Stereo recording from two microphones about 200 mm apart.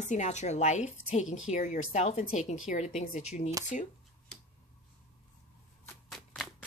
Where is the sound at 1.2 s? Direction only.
85° left.